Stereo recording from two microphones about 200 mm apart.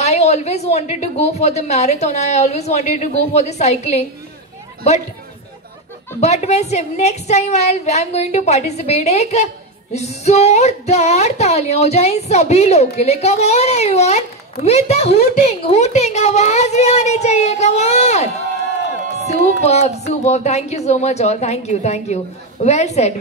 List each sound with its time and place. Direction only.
0.0 s speech: 35° left (ahead or behind)
6.2 s speech: 35° left (ahead or behind)